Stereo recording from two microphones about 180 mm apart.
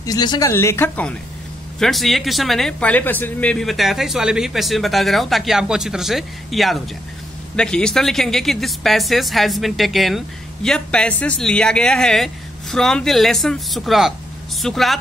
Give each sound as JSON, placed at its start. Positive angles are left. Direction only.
{"t": 0.0, "sound": "a woman's voice", "side_deg": 20}